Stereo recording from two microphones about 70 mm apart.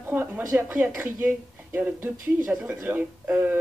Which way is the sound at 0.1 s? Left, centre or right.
Right.